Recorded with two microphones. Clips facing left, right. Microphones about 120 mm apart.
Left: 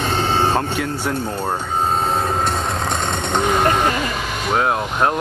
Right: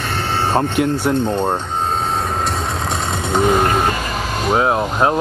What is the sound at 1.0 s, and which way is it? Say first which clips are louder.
Speech: right 5 dB; 20° right (ahead or behind).